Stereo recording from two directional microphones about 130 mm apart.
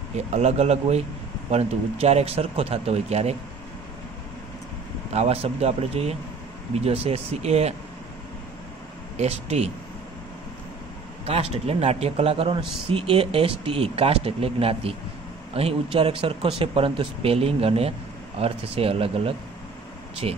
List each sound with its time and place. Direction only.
0.1 s speech: 55° right (ahead or behind)
5.1 s speech: 50° right (ahead or behind)
9.1 s speech: 55° right (ahead or behind)
11.2 s speech: 50° right (ahead or behind)